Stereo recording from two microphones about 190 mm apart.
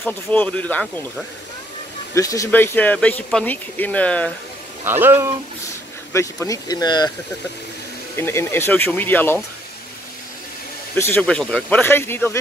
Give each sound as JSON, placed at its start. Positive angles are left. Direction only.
{"t": 0.0, "sound": "speech", "side_deg": 10}
{"t": 2.1, "sound": "speech", "side_deg": 15}
{"t": 4.8, "sound": "speech", "side_deg": -10}
{"t": 6.1, "sound": "speech", "side_deg": 15}
{"t": 8.2, "sound": "speech", "side_deg": 10}
{"t": 11.0, "sound": "speech", "side_deg": 10}